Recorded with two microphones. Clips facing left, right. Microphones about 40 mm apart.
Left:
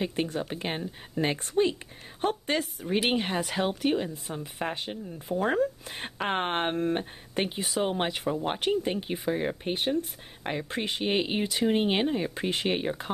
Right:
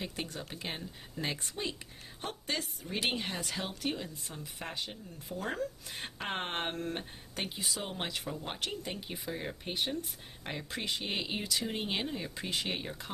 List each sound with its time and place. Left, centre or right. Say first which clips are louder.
0.0 s speech: left 10 dB; left